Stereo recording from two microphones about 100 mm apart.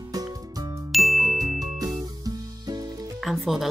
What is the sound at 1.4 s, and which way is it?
Music, 40° right (ahead or behind).